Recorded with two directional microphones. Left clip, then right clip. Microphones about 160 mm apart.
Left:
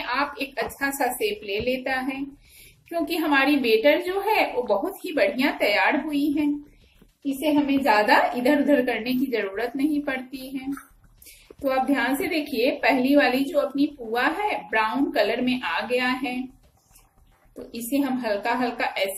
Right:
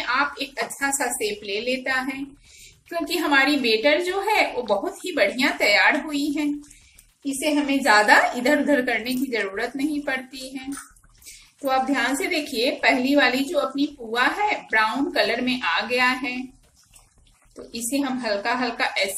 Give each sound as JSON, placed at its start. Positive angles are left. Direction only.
{"t": 0.0, "sound": "a woman's voice", "side_deg": -35}
{"t": 7.2, "sound": "a woman's voice", "side_deg": -40}
{"t": 17.6, "sound": "a woman's voice", "side_deg": -35}